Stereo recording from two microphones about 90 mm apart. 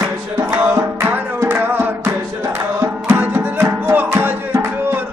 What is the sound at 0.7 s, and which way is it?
Music, 30° right (ahead or behind).